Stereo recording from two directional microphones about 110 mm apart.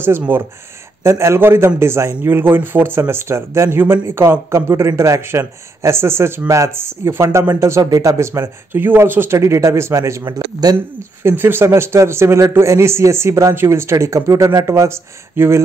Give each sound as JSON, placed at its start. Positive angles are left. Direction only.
{"t": 0.3, "sound": "a man's voice", "side_deg": -20}
{"t": 11.2, "sound": "a man's voice", "side_deg": -20}